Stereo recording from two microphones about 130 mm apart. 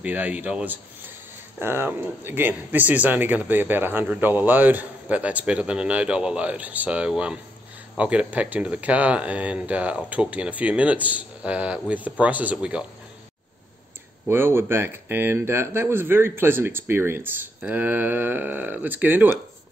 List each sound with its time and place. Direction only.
0.0 s speech: 10° right (ahead or behind)
14.2 s speech: 20° right (ahead or behind)